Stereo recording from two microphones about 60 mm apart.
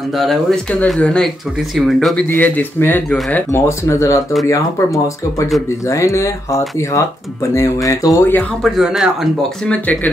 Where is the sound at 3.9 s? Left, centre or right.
Left.